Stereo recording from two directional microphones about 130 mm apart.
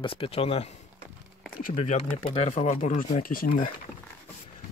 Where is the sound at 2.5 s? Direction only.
65° left (ahead or behind); by 3.7 s 90° left.